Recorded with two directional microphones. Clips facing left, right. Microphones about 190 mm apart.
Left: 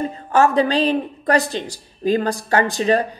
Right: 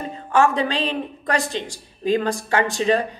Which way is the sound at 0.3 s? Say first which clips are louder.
Left 3 dB; 40° left (ahead or behind).